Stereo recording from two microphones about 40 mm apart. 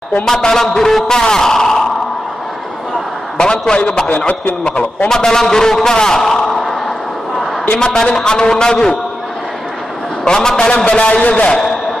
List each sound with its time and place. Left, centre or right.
0.2 s a man's voice: centre
3.3 s a man's voice: left
5.1 s a man's voice: centre
7.8 s a man's voice: centre
10.2 s a man's voice: centre
10.9 s a man's voice: left